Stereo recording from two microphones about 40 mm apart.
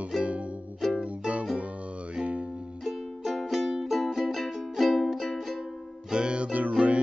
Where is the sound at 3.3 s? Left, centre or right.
Centre.